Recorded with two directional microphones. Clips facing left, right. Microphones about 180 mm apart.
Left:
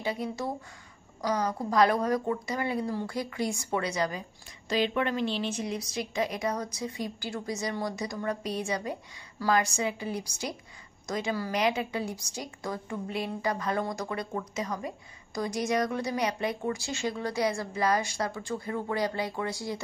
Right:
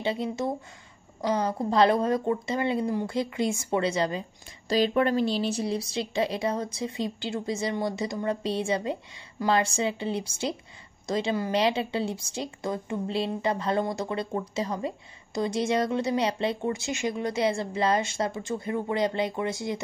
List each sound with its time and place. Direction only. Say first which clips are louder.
0.0 s a woman's voice: right 4 dB; 25° right (ahead or behind)